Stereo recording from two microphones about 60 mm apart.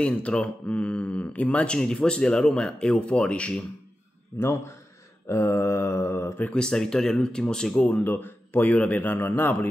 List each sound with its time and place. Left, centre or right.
0.0 s speech: centre
4.4 s mantra: left
6.5 s speech: centre
7.8 s speech: left